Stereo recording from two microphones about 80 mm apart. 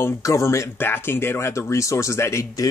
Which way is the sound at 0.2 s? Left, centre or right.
Left.